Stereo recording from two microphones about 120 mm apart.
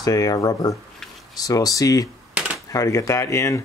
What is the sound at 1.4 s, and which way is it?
Speech, 30° left (ahead or behind).